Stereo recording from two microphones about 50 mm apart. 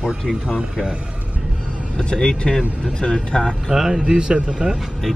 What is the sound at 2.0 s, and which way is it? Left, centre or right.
Speech, centre.